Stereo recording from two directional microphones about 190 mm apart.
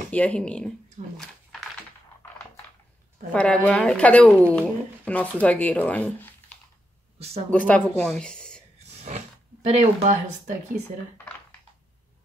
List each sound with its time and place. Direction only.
0.1 s a sound: 10° left (ahead or behind)
3.3 s speech: 5° left (ahead or behind)
7.5 s speech: 5° left (ahead or behind)
8.7 s speech: 35° right (ahead or behind)